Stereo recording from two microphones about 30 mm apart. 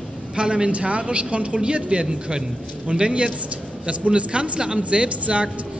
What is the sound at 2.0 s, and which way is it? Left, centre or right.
A man's voice, right.